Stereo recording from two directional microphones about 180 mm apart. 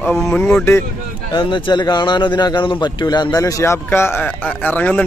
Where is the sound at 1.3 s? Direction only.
25° left (ahead or behind).